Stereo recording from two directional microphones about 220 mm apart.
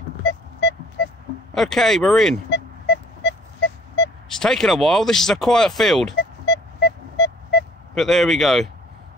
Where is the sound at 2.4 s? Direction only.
55° left (ahead or behind).